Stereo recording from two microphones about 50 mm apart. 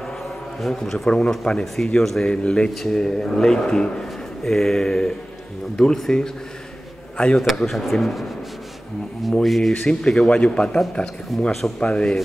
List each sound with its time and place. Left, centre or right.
0.6 s a man's voice: centre
2.4 s speech: centre
2.7 s a man's voice: centre
7.3 s speech: centre
9.4 s speech: centre
10.0 s a man's voice: centre
11.3 s speech: centre
11.8 s a man's voice: centre